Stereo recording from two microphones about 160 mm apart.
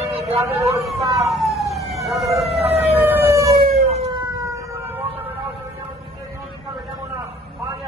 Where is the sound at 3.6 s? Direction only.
40° right (ahead or behind).